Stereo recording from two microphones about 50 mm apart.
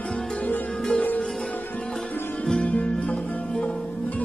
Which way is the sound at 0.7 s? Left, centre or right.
Centre.